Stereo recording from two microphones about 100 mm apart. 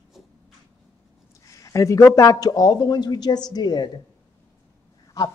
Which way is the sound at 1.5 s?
35° left (ahead or behind).